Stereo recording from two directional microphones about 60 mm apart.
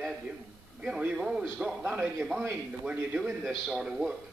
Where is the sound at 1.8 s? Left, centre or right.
Right.